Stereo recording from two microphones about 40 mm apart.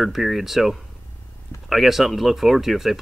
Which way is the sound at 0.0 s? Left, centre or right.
Centre.